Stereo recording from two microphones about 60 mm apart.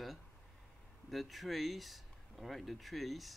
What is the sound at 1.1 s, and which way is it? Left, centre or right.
Speech, centre.